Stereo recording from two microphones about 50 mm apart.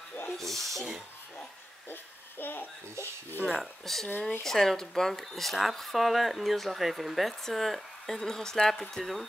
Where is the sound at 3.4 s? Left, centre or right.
Centre.